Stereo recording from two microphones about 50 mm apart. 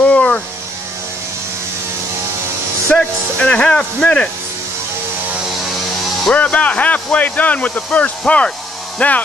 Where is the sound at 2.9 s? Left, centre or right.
Left.